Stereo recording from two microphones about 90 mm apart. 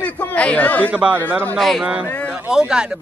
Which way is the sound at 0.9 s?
20° right (ahead or behind).